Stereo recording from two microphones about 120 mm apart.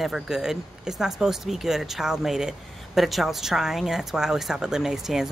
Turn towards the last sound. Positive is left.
turn(degrees=-5)  # may be behind; listen again after turning